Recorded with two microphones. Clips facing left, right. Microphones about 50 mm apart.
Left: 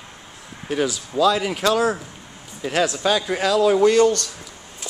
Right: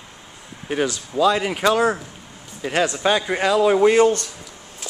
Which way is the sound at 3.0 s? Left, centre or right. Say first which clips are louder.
Right 1 dB; right.